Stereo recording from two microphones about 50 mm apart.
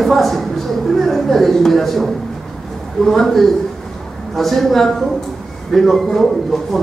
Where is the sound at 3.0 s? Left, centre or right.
Centre.